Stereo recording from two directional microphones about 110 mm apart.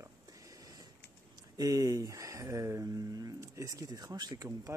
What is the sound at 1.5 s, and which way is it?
Speech, 35° right (ahead or behind).